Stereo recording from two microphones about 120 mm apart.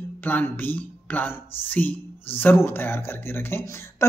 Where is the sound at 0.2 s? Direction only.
15° left (ahead or behind).